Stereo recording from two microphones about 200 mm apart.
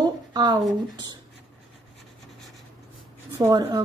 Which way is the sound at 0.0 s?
20° right (ahead or behind).